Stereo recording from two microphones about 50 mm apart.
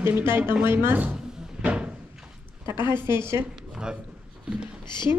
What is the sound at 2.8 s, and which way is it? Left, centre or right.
Speech, right.